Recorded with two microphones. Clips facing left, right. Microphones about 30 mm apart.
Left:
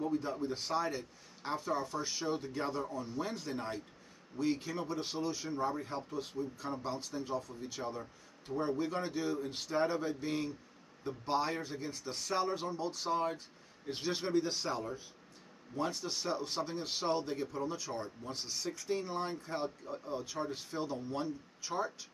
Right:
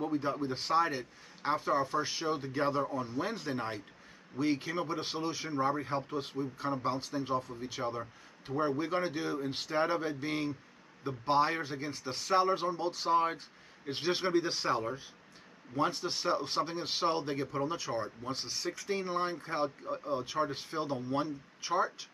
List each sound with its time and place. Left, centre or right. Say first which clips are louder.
0.0 s a man's voice: right 2 dB; right